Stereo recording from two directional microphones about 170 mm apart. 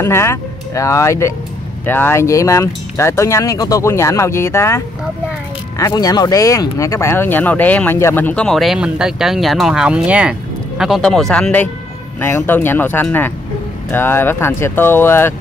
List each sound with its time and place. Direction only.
0.0 s speech: 15° left (ahead or behind)